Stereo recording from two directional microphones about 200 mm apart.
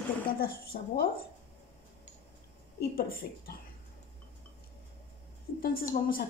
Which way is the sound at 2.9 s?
50° left (ahead or behind).